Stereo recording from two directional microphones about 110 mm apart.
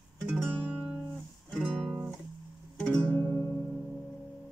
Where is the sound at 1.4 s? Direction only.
5° left (ahead or behind); by 3.6 s 20° left (ahead or behind).